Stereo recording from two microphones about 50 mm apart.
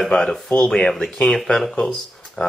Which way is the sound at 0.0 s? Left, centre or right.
Centre.